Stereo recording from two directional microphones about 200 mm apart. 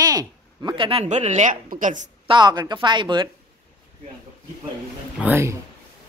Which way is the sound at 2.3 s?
20° right (ahead or behind).